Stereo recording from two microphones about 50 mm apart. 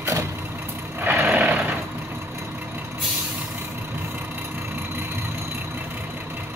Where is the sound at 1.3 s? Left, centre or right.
Right.